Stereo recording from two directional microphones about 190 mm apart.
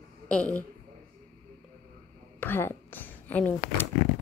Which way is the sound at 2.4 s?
10° left (ahead or behind).